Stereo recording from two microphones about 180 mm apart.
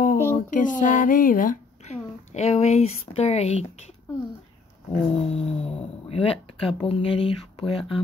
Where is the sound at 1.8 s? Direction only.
40° left (ahead or behind).